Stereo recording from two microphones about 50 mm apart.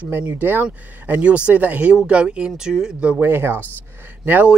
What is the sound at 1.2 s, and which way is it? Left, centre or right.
Speech, right.